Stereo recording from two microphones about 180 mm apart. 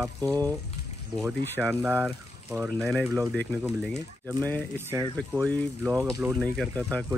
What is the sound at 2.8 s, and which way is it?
Speech, centre (ahead or behind).